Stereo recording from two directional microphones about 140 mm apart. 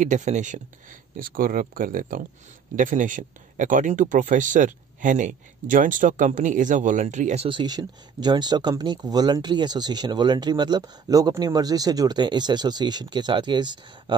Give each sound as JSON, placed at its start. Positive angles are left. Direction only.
{"t": 0.0, "sound": "speech", "side_deg": -60}
{"t": 1.1, "sound": "speech", "side_deg": -90}
{"t": 2.7, "sound": "speech", "side_deg": -70}
{"t": 7.4, "sound": "speech", "side_deg": -35}